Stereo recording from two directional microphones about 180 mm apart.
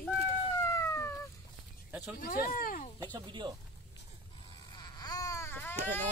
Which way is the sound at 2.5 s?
50° left (ahead or behind).